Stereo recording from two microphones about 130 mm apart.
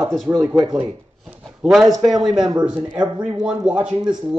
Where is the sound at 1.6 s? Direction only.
Centre (ahead or behind).